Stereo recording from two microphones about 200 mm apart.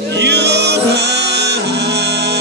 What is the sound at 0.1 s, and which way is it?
Music, 60° right (ahead or behind).